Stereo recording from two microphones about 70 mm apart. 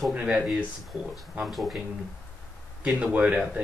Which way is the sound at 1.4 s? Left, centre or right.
Centre.